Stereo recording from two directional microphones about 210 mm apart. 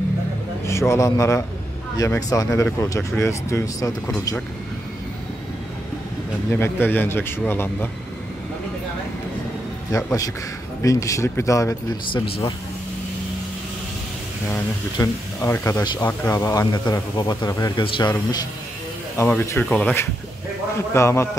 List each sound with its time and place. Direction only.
0.7 s a man's voice: 15° left (ahead or behind)
6.5 s speech: 10° left (ahead or behind)
9.9 s speech: 15° left (ahead or behind)
14.5 s speech: 15° left (ahead or behind)